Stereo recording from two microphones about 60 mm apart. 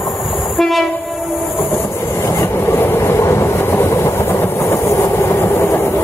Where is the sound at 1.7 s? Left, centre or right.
Left.